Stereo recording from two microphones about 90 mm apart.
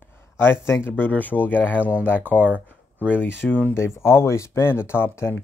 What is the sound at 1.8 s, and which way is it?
Speech, 15° right (ahead or behind).